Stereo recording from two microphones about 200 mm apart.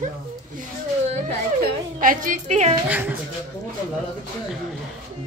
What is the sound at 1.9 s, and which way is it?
Speech, 40° right (ahead or behind).